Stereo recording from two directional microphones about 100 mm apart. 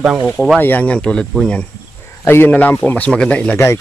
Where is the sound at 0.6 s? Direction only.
15° left (ahead or behind).